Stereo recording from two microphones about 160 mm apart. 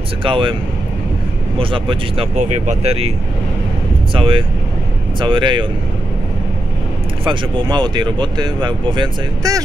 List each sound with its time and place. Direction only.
0.2 s speech: 30° right (ahead or behind)
1.6 s speech: 35° right (ahead or behind)
2.3 s speech: 45° right (ahead or behind)
4.1 s speech: 35° right (ahead or behind)
7.2 s speech: 30° right (ahead or behind)